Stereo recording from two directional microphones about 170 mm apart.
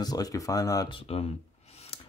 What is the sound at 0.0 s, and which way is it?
Speech, 20° left (ahead or behind).